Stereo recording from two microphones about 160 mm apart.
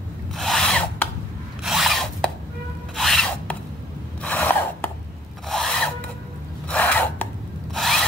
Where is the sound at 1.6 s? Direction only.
Centre (ahead or behind).